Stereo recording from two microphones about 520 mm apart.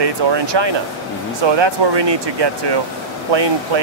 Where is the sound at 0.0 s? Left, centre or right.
Right.